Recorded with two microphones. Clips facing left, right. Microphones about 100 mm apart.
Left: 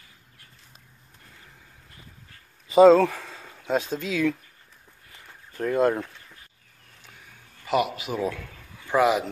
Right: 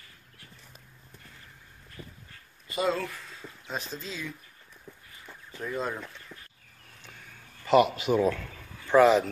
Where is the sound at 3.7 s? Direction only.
65° left (ahead or behind).